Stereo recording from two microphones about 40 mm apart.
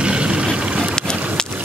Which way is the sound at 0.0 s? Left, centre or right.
Right.